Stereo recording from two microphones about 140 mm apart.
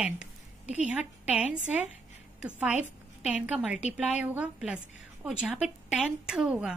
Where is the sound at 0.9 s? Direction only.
10° right (ahead or behind).